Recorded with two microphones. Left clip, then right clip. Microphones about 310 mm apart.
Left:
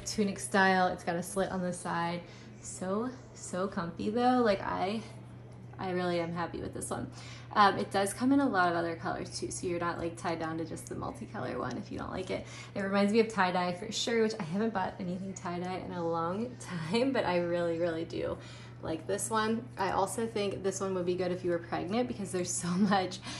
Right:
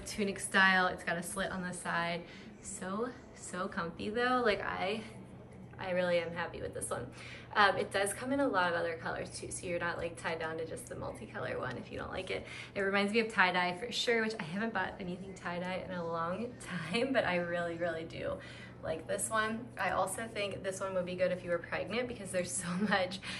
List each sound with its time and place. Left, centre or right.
0.1 s a woman's voice: centre
7.8 s a woman's voice: centre